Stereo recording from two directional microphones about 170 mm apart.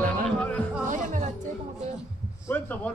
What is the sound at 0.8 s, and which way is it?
Music, 45° right (ahead or behind).